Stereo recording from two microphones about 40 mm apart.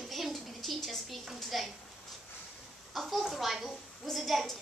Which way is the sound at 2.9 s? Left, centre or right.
Centre.